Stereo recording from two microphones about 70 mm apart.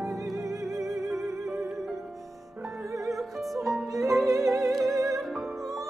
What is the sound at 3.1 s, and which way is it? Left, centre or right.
Music, centre.